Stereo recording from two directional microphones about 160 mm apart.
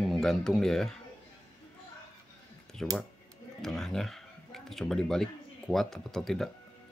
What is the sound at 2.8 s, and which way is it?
Speech, 5° left (ahead or behind).